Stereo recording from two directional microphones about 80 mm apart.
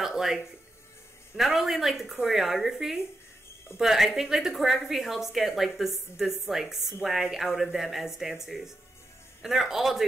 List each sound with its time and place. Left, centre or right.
0.0 s music: centre
1.3 s a woman's voice: centre